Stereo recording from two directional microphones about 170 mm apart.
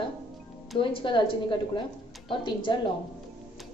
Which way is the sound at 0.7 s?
30° left (ahead or behind).